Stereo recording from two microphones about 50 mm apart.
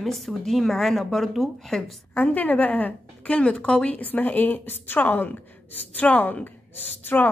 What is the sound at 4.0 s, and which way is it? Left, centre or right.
A woman's voice, left.